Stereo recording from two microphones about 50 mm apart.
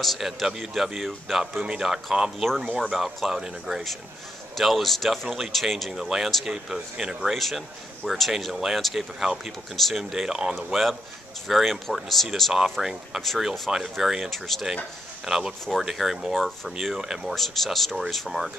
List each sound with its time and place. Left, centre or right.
0.0 s a man's voice: centre
5.9 s a man's voice: centre